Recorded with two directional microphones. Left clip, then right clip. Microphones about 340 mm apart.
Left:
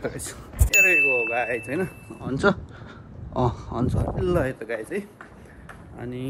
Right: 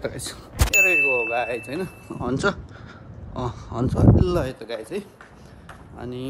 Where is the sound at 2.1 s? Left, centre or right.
Right.